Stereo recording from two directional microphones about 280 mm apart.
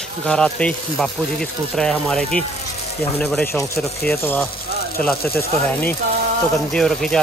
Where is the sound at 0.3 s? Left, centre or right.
Centre.